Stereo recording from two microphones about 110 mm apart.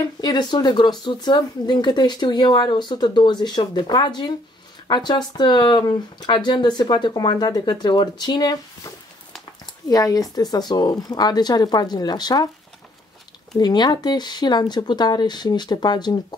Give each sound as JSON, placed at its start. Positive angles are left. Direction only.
{"t": 0.2, "sound": "speech", "side_deg": 40}
{"t": 9.8, "sound": "speech", "side_deg": 35}
{"t": 13.6, "sound": "speech", "side_deg": 40}